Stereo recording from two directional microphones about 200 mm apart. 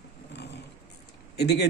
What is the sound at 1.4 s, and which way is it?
Speech, 55° left (ahead or behind).